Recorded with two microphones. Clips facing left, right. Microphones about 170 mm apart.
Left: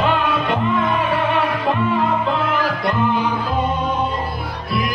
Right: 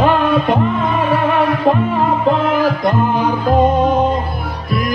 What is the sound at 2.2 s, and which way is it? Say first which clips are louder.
Music: right 6 dB; 45° right (ahead or behind).